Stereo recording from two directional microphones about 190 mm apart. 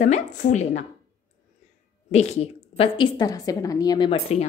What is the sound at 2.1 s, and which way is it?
A woman's voice, 35° left (ahead or behind).